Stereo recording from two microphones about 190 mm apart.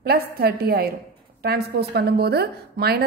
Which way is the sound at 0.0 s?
55° right (ahead or behind).